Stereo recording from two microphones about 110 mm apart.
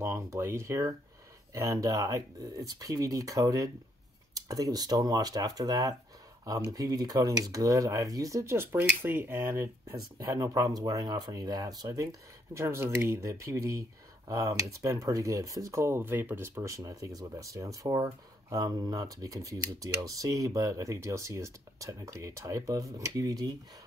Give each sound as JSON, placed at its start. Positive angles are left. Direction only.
{"t": 0.0, "sound": "speech", "side_deg": -25}